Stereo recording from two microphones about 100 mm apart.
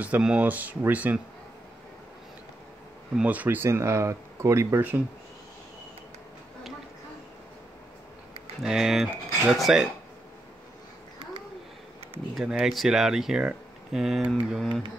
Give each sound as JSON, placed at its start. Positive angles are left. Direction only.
{"t": 0.0, "sound": "speech", "side_deg": -10}
{"t": 3.2, "sound": "speech", "side_deg": -15}
{"t": 8.6, "sound": "speech", "side_deg": -5}
{"t": 12.4, "sound": "speech", "side_deg": -5}